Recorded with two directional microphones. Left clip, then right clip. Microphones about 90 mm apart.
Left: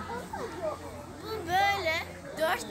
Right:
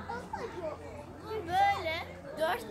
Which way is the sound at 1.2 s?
30° right (ahead or behind).